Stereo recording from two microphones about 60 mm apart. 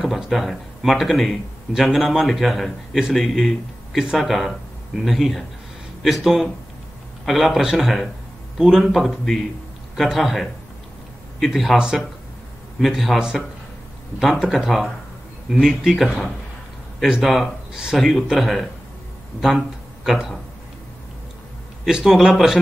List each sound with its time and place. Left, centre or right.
0.0 s a man's voice: centre
12.8 s speech: centre
14.4 s speech: centre
20.1 s speech: centre
21.8 s speech: centre